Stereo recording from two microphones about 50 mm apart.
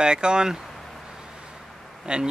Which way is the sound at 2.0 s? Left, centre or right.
Centre.